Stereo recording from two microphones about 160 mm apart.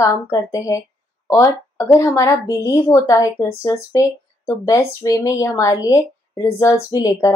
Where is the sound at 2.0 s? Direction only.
15° left (ahead or behind).